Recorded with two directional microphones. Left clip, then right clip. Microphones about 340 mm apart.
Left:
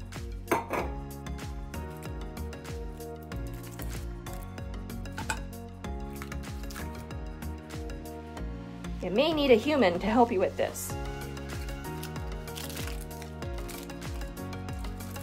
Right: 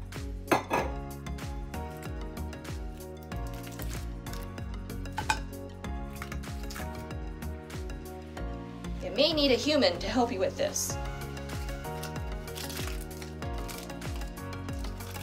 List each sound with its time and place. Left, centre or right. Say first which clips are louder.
0.5 s dishes: right 2 dB; centre
5.1 s music: right 5 dB; centre
9.1 s speech: left 2 dB; centre